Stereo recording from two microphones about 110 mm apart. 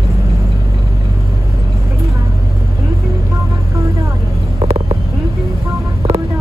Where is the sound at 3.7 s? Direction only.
30° right (ahead or behind).